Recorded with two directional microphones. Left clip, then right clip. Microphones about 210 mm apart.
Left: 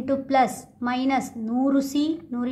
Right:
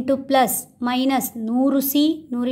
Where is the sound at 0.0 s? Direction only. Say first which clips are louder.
Right 3 dB; 40° right (ahead or behind).